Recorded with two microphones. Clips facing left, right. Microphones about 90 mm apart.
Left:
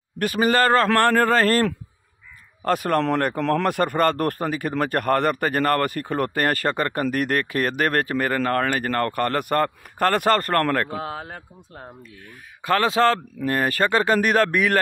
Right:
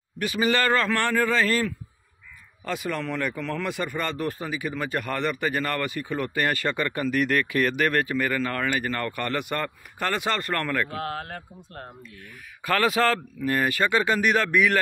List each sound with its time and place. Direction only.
0.2 s speech: 45° left (ahead or behind)
0.8 s speech: 55° left (ahead or behind)
10.9 s speech: 15° left (ahead or behind)
12.6 s speech: 30° left (ahead or behind)
13.4 s speech: 40° left (ahead or behind)